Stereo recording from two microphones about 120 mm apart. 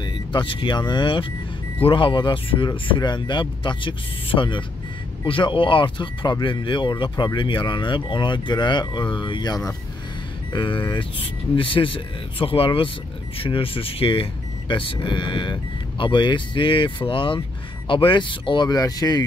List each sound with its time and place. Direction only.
0.0 s speech: 40° left (ahead or behind)